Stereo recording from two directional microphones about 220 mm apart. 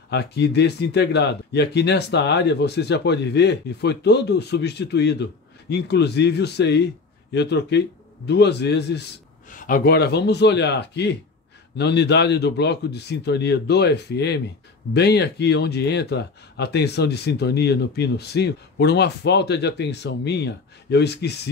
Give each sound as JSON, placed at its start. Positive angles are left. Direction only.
{"t": 0.1, "sound": "speech", "side_deg": 50}
{"t": 9.5, "sound": "speech", "side_deg": 35}